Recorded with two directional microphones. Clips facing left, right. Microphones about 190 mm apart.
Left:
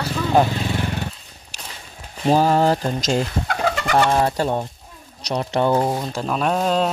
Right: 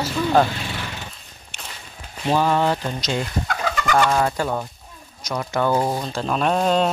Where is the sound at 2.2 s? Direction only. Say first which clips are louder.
Left 3 dB; 40° left (ahead or behind); by 5.9 s 20° left (ahead or behind).